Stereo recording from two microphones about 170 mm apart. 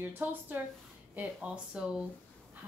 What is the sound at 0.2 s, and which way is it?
Speech, 10° right (ahead or behind).